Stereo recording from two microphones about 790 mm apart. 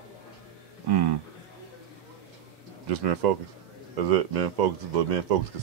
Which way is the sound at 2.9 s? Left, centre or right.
Right.